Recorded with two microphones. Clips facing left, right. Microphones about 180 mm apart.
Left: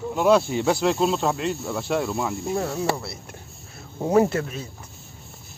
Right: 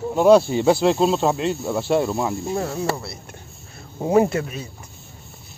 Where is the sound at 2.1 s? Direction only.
20° right (ahead or behind).